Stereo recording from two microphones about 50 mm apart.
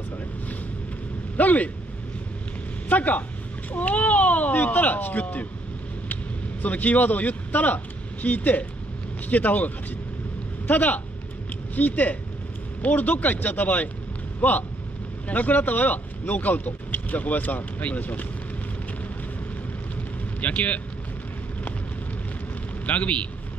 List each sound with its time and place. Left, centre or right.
1.3 s a sound: left
2.9 s speech: left
6.6 s speech: left
10.7 s speech: left
20.3 s speech: left
22.8 s speech: left